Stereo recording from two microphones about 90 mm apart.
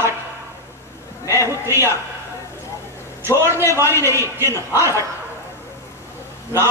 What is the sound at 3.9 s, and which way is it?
A man's voice, 30° left (ahead or behind).